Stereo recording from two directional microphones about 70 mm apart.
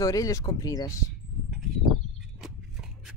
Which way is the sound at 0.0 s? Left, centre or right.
Left.